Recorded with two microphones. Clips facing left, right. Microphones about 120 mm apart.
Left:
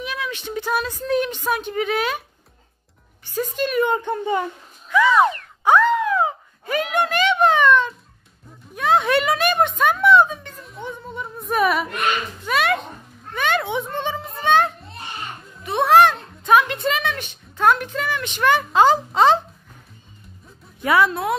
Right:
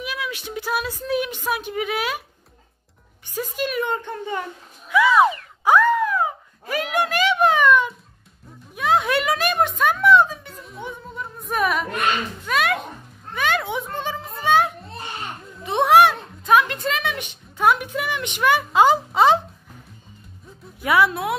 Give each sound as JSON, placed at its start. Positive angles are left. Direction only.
{"t": 0.0, "sound": "a sound", "side_deg": -5}
{"t": 1.5, "sound": "a woman's voice", "side_deg": -5}
{"t": 3.3, "sound": "speech", "side_deg": -10}
{"t": 3.8, "sound": "speech", "side_deg": 10}
{"t": 4.8, "sound": "a sound", "side_deg": -10}
{"t": 5.9, "sound": "wail", "side_deg": 15}
{"t": 6.6, "sound": "a sound", "side_deg": 0}
{"t": 13.3, "sound": "children playing", "side_deg": 0}
{"t": 15.6, "sound": "a sound", "side_deg": -20}
{"t": 16.4, "sound": "a woman's voice", "side_deg": 0}
{"t": 17.1, "sound": "speech", "side_deg": -10}
{"t": 20.8, "sound": "a woman's voice", "side_deg": -5}